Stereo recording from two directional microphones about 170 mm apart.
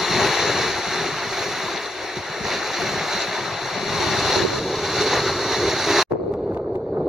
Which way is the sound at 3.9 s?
Centre (ahead or behind).